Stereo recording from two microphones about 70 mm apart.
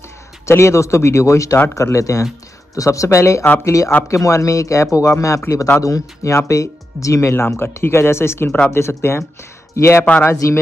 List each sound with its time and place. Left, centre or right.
0.5 s speech: left
8.5 s speech: centre
8.7 s speech: left